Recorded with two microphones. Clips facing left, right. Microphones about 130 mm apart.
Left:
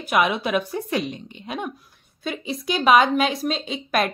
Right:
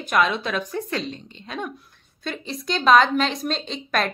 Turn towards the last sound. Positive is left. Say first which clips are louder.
# left 2 dB
turn(degrees=5)  # may be behind; listen again after turning